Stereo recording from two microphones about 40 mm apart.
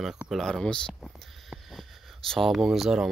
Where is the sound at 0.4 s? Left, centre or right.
Centre.